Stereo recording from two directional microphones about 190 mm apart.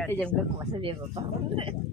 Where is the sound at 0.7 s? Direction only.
25° right (ahead or behind).